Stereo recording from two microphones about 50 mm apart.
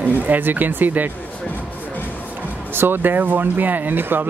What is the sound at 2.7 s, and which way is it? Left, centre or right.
Speech, right.